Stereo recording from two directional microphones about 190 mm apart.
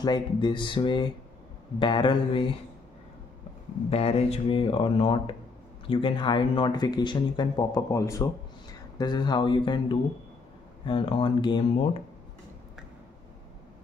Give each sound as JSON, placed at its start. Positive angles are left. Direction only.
{"t": 0.0, "sound": "speech", "side_deg": 25}
{"t": 3.9, "sound": "speech", "side_deg": 30}